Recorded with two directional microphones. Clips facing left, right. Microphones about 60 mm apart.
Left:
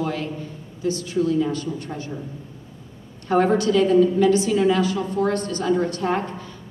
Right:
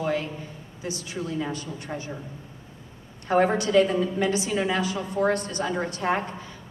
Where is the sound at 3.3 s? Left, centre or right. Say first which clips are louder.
Left 3 dB; right.